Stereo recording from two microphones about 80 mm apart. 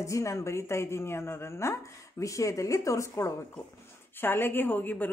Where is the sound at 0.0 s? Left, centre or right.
Left.